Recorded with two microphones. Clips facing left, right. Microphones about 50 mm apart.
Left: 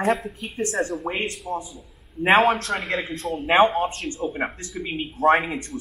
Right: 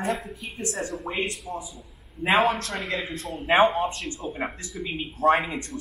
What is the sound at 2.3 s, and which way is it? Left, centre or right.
Speech, left.